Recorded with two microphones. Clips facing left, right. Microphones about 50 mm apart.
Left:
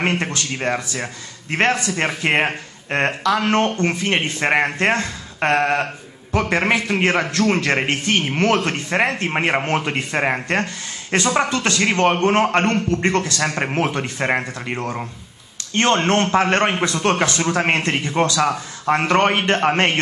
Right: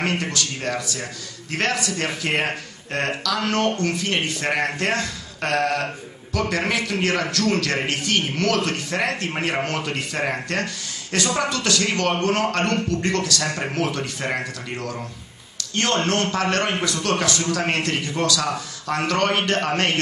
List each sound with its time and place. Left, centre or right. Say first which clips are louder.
0.0 s a man's voice: left 3 dB; left